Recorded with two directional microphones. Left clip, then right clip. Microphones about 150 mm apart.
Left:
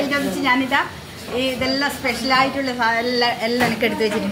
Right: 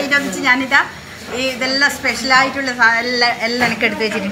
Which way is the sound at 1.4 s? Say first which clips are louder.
Right 5 dB; 25° left (ahead or behind).